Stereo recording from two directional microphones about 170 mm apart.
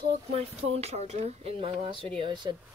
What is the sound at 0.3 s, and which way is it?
Speech, 35° right (ahead or behind).